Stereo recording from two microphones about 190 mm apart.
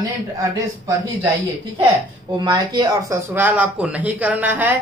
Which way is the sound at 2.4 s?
20° right (ahead or behind).